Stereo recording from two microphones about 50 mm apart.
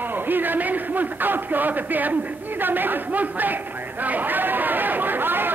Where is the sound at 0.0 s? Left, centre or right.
Right.